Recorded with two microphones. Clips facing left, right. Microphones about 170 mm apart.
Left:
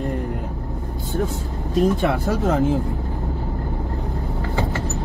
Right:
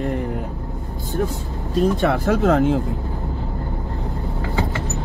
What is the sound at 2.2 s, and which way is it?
Speech, 90° right.